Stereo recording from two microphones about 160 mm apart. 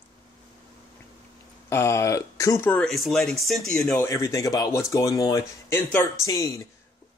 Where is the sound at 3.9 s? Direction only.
20° left (ahead or behind).